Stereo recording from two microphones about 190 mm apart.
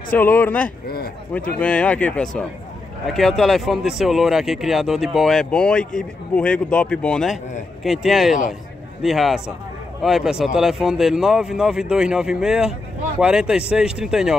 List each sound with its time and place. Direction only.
0.1 s a man's voice: 10° left (ahead or behind)
0.8 s speech: 50° left (ahead or behind)
1.6 s a man's voice: 5° left (ahead or behind)